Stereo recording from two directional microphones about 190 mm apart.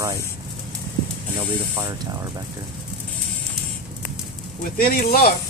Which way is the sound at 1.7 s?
20° right (ahead or behind).